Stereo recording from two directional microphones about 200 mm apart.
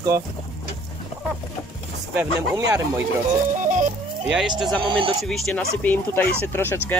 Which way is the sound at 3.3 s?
40° right (ahead or behind).